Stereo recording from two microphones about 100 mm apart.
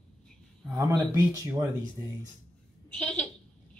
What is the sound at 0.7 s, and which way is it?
Speech, 35° right (ahead or behind).